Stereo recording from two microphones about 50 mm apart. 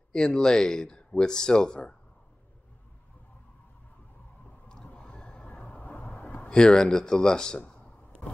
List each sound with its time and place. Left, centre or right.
0.1 s speech: centre
4.9 s a sound: centre
6.5 s speech: centre